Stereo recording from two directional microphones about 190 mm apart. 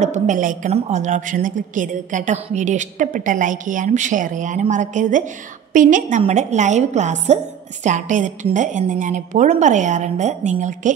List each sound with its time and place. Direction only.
0.0 s a woman's voice: 40° right (ahead or behind)